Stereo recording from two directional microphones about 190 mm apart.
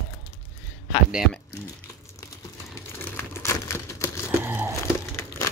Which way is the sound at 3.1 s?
15° left (ahead or behind).